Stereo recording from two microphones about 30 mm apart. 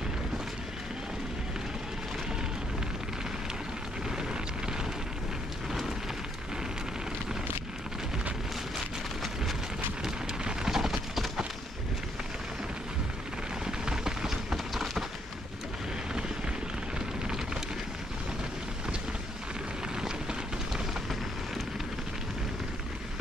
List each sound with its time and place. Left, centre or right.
10.4 s vehicle: centre
13.7 s a sound: right
20.0 s vehicle: right